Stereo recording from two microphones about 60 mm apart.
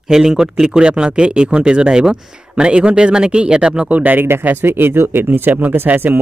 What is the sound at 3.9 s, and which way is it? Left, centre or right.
Speech, right.